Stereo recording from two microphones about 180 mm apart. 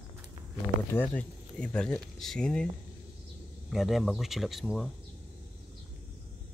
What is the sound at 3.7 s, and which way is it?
Speech, centre (ahead or behind).